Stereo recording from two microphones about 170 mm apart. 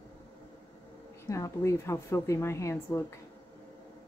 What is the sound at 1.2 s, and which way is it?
A woman's voice, 20° left (ahead or behind).